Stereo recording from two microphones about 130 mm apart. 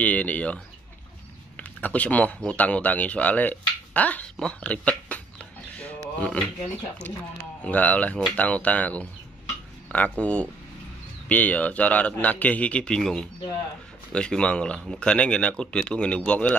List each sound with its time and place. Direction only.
0.0 s a man's voice: 10° left (ahead or behind)
1.6 s a man's voice: 10° left (ahead or behind)